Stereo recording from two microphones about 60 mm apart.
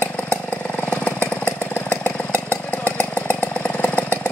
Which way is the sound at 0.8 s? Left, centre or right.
Left.